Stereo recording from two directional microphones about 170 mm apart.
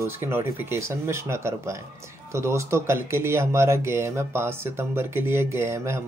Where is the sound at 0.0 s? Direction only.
15° right (ahead or behind).